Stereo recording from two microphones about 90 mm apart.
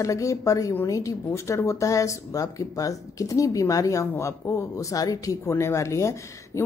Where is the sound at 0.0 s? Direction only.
35° left (ahead or behind).